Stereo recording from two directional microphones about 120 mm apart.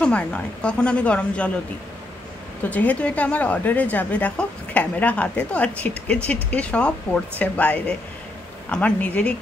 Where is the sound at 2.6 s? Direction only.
15° left (ahead or behind).